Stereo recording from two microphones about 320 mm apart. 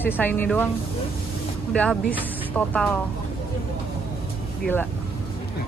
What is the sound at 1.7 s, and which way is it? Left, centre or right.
Speech, centre.